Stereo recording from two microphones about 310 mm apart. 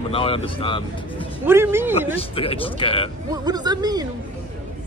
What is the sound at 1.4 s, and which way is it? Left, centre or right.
Speech, centre.